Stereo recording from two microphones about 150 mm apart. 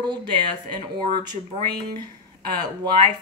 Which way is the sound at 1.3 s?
30° right (ahead or behind).